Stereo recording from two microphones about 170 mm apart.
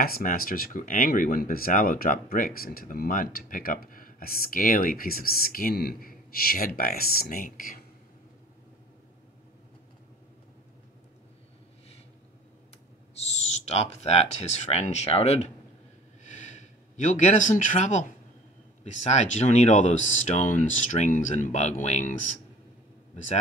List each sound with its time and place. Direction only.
0.0 s speech: 60° left (ahead or behind)
13.5 s speech: 40° left (ahead or behind)
16.3 s a sound: 45° left (ahead or behind)
19.0 s speech: 40° left (ahead or behind)